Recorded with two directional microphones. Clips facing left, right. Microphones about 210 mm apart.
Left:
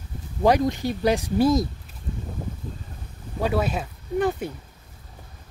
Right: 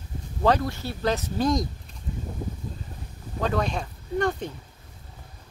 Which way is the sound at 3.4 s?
5° left (ahead or behind).